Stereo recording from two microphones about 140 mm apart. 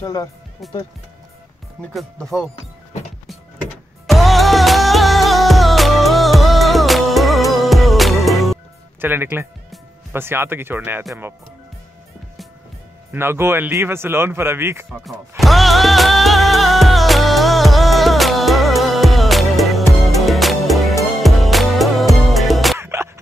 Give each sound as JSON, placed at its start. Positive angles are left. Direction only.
{"t": 0.0, "sound": "speech", "side_deg": 25}
{"t": 1.8, "sound": "speech", "side_deg": 5}
{"t": 4.1, "sound": "music", "side_deg": 0}
{"t": 9.0, "sound": "speech", "side_deg": -15}
{"t": 13.1, "sound": "speech", "side_deg": -15}
{"t": 14.9, "sound": "music", "side_deg": 0}
{"t": 22.8, "sound": "music", "side_deg": -20}